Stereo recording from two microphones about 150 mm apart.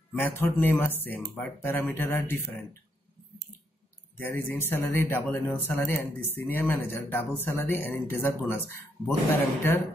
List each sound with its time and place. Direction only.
0.4 s a man's voice: 15° left (ahead or behind)
4.2 s a man's voice: 15° left (ahead or behind)